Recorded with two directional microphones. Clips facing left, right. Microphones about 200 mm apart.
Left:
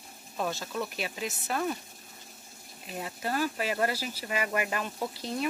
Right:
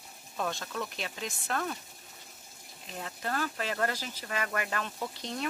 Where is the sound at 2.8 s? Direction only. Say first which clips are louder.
Left 3 dB; 10° left (ahead or behind).